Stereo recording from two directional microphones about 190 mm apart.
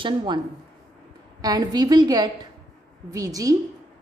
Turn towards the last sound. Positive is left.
turn(degrees=-15)  # may be behind; listen again after turning